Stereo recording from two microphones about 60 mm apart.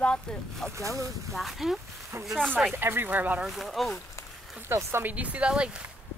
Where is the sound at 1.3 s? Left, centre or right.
Centre.